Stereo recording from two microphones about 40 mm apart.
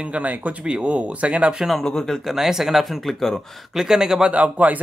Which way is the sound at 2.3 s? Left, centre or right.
Centre.